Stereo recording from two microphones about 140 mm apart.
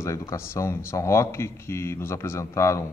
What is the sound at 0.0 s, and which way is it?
A man's voice, 20° left (ahead or behind).